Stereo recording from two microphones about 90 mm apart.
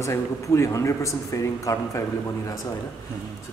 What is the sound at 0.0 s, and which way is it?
A man's voice, 35° left (ahead or behind).